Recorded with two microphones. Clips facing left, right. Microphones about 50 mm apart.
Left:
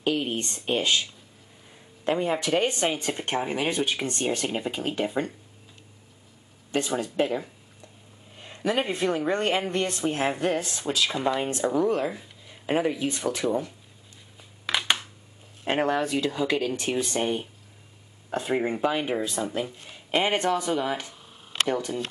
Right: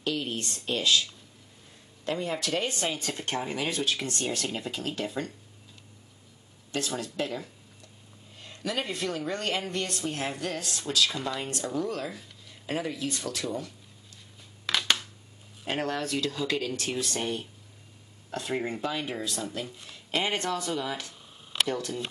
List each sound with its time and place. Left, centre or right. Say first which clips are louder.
0.0 s speech: left 5 dB; left
6.7 s speech: left 5 dB; left
14.7 s a sound: left 2 dB; centre
15.6 s speech: left 6 dB; left